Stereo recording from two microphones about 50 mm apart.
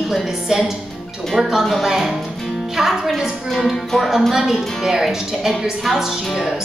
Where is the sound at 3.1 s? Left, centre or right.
Centre.